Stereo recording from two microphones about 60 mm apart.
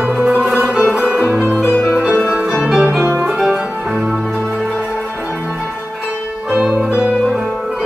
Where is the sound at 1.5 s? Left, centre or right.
Left.